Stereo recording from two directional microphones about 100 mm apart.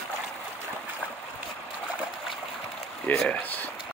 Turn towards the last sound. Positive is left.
turn(degrees=15)  # may be behind; listen again after turning